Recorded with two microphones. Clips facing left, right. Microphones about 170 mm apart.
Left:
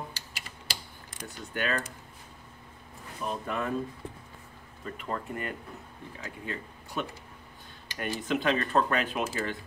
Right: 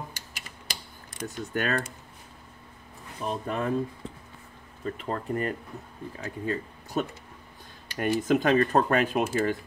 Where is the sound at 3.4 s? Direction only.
35° right (ahead or behind).